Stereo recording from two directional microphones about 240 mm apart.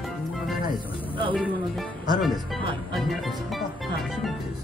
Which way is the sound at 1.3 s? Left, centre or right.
Centre.